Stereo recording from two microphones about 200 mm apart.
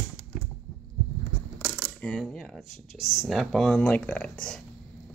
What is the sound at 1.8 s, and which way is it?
Speech, 5° left (ahead or behind).